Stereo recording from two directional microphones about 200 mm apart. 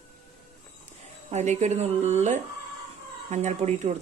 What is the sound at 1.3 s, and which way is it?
Speech, 35° right (ahead or behind).